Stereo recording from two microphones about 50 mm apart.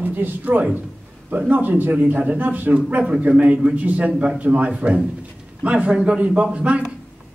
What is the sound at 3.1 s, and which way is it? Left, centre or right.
A man's voice, right.